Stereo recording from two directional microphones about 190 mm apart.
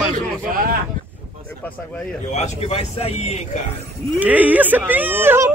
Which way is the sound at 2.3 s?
35° left (ahead or behind).